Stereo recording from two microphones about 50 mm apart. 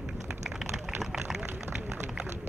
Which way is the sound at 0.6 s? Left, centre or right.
Centre.